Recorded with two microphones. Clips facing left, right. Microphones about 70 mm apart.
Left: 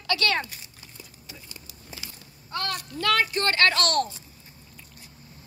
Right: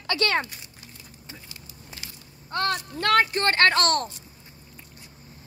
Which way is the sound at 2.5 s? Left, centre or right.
Right.